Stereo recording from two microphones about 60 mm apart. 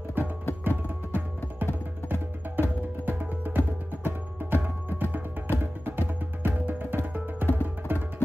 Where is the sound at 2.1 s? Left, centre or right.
Right.